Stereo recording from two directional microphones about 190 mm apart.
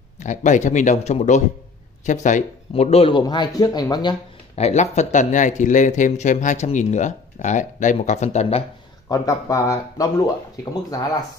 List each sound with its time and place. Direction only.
0.2 s speech: 40° left (ahead or behind); by 4.1 s 20° left (ahead or behind)
4.6 s speech: 35° left (ahead or behind)
9.1 s speech: 20° left (ahead or behind)